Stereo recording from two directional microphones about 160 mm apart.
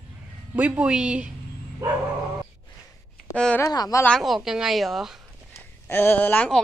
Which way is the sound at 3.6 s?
20° left (ahead or behind).